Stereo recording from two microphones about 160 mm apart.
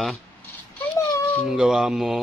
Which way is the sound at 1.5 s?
5° right (ahead or behind).